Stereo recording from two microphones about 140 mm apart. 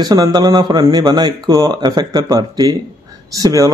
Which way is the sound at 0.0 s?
25° right (ahead or behind).